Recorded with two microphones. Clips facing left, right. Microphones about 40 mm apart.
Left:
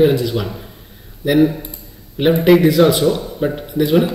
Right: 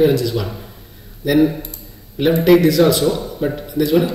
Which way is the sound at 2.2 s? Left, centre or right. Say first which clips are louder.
Left 1 dB; centre.